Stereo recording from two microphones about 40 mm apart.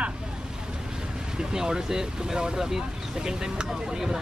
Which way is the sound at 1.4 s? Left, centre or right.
Centre.